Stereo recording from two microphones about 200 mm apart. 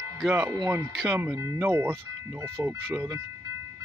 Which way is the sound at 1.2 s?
10° right (ahead or behind).